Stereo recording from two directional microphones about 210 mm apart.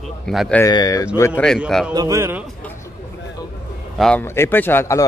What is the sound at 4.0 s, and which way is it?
Speech, 10° left (ahead or behind).